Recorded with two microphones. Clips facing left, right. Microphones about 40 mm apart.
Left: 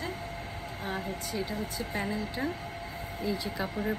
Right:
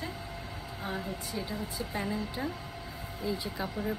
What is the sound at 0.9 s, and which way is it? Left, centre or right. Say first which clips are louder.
Speech: left 2 dB; left.